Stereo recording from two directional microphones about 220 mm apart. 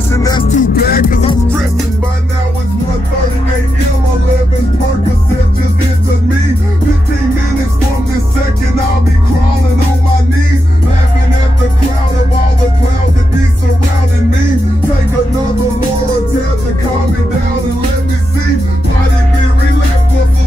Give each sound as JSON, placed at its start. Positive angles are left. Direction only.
{"t": 0.1, "sound": "music", "side_deg": 15}
{"t": 0.5, "sound": "music", "side_deg": 40}